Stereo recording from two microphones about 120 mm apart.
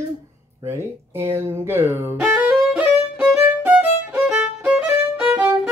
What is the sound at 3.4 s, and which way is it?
Violin, 15° right (ahead or behind).